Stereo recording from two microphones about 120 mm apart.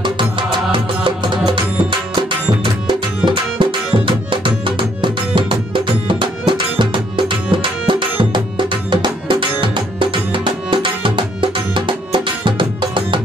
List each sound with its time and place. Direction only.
0.0 s music: 40° right (ahead or behind)